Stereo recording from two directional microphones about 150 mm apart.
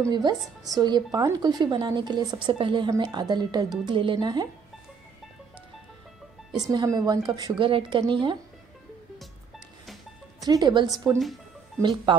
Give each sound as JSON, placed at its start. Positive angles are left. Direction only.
{"t": 0.1, "sound": "speech", "side_deg": -30}
{"t": 6.6, "sound": "speech", "side_deg": -25}
{"t": 10.4, "sound": "speech", "side_deg": -25}
{"t": 11.1, "sound": "speech", "side_deg": 0}
{"t": 12.1, "sound": "speech", "side_deg": -35}